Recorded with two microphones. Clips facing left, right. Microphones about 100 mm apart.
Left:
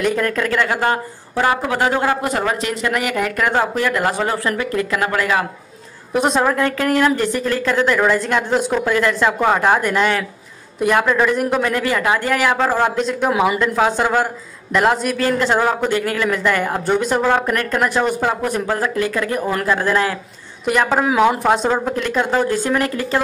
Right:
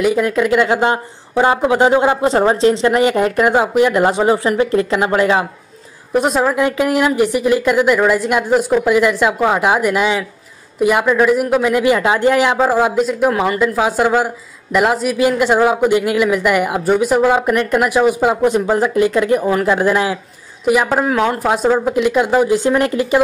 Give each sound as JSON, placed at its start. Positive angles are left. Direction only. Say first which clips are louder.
{"t": 0.0, "sound": "speech", "louder": "right 4 dB", "side_deg": -10}
{"t": 6.1, "sound": "a woman's voice", "louder": "right 2 dB", "side_deg": 0}
{"t": 6.6, "sound": "speech", "louder": "right 2 dB", "side_deg": -15}
{"t": 12.5, "sound": "speech", "louder": "right 3 dB", "side_deg": -5}
{"t": 13.3, "sound": "speech", "louder": "even", "side_deg": 10}
{"t": 13.6, "sound": "a woman's voice", "louder": "right 2 dB", "side_deg": -5}
{"t": 19.4, "sound": "a woman's voice", "louder": "right 5 dB", "side_deg": -5}
{"t": 19.7, "sound": "speech", "louder": "right 1 dB", "side_deg": -15}
{"t": 20.6, "sound": "speech", "louder": "right 2 dB", "side_deg": -5}